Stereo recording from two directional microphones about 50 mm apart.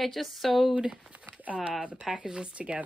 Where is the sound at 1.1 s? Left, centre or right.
Right.